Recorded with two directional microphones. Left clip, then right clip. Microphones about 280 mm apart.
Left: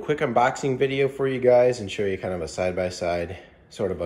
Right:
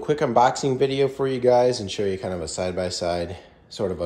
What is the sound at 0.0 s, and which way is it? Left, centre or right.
Speech, centre.